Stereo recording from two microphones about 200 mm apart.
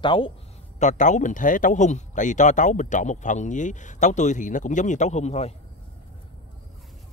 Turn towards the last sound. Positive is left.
turn(degrees=35)  # may be behind; listen again after turning